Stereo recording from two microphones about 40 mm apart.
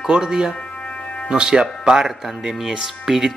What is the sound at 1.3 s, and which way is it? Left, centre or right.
Speech, centre.